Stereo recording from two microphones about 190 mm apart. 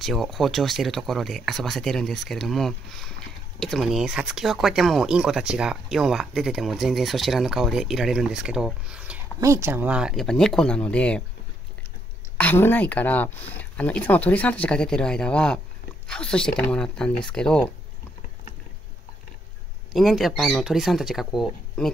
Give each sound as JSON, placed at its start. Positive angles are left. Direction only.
{"t": 0.0, "sound": "speech", "side_deg": 0}
{"t": 12.4, "sound": "speech", "side_deg": 10}
{"t": 19.9, "sound": "speech", "side_deg": 0}